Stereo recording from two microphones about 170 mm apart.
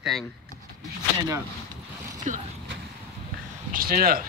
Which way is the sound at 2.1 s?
45° right (ahead or behind).